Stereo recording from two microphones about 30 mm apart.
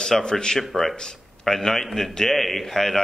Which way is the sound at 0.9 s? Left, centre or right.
Centre.